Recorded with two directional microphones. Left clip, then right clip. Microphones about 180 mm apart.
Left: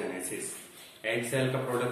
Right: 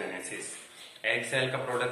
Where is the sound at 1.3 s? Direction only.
15° right (ahead or behind).